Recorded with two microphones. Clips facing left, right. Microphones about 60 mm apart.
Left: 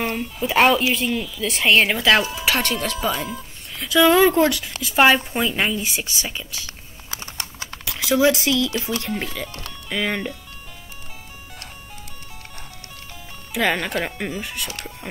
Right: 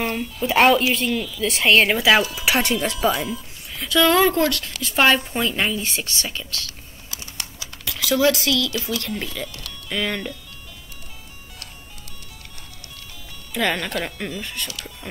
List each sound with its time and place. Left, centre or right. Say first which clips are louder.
0.0 s speech: even; centre; by 3.3 s right
3.7 s speech: left 2 dB; centre
7.1 s typing: left 3 dB; left
8.0 s speech: left 1 dB; left
9.8 s speech: left 1 dB; centre
13.5 s speech: left 2 dB; centre
14.7 s speech: left 2 dB; left